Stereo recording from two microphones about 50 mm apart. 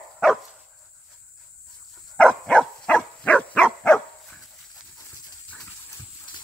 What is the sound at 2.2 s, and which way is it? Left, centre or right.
Dog, centre.